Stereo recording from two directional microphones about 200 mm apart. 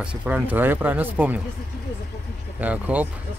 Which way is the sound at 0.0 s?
5° right (ahead or behind).